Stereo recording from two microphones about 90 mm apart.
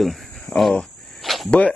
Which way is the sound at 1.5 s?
15° left (ahead or behind).